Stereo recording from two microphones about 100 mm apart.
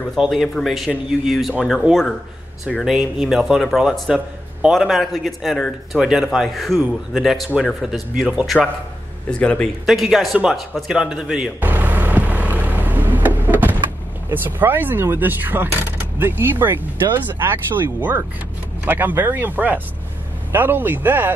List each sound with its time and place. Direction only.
0.1 s speech: centre (ahead or behind)
9.3 s speech: 10° left (ahead or behind)
9.8 s speech: centre (ahead or behind)
11.6 s vehicle: 15° right (ahead or behind)
14.3 s speech: 20° right (ahead or behind)